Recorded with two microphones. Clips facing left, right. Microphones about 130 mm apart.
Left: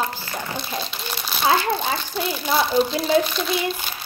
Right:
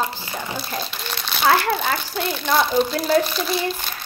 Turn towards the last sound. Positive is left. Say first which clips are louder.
# even
turn(degrees=0)  # may be behind; listen again after turning